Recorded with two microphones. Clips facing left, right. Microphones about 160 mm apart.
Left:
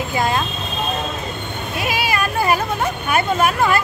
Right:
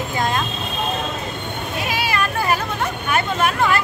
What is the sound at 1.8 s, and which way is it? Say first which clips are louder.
Vehicle: left 2 dB; 10° left (ahead or behind).